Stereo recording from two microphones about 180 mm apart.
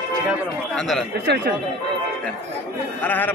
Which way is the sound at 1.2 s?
65° right (ahead or behind).